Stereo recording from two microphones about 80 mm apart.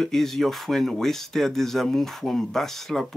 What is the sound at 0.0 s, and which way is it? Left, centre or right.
Speech, centre.